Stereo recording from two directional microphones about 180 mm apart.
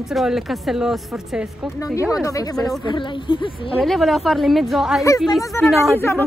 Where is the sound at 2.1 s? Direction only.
20° left (ahead or behind).